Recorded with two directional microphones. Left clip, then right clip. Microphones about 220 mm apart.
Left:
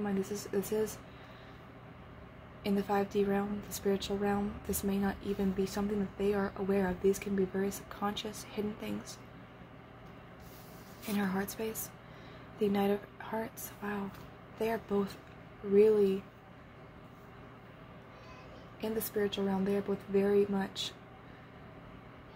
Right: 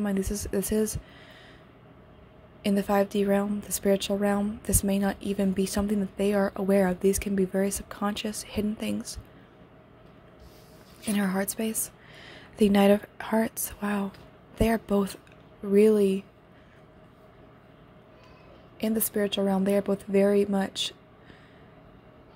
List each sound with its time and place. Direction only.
0.0 s a woman's voice: 45° right (ahead or behind)
2.6 s a woman's voice: 40° right (ahead or behind)
11.1 s a woman's voice: 45° right (ahead or behind)
18.8 s a woman's voice: 50° right (ahead or behind)